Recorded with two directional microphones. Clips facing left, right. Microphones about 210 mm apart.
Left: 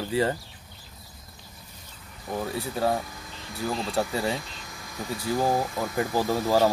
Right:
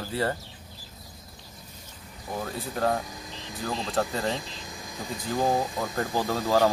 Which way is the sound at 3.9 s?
10° left (ahead or behind).